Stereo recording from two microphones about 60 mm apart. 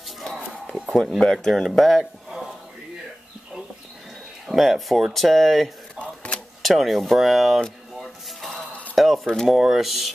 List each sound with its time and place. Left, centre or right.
0.8 s speech: centre
4.5 s speech: centre
5.9 s a sound: centre
6.6 s speech: centre
8.0 s a sound: centre
9.5 s speech: centre